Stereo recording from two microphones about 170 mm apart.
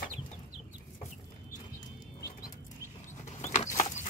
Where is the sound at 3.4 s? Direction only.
40° left (ahead or behind).